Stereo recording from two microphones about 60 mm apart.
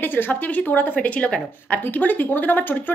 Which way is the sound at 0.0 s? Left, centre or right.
Left.